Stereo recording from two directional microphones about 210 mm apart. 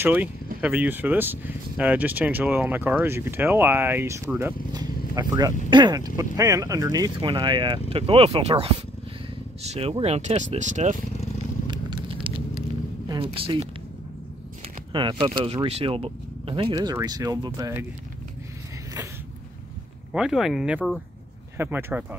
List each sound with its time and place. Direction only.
0.0 s speech: 10° right (ahead or behind); by 11.0 s 35° right (ahead or behind)
11.6 s a sound: 20° right (ahead or behind)
13.1 s speech: 25° right (ahead or behind)
14.9 s speech: 25° right (ahead or behind)
20.1 s speech: 5° right (ahead or behind)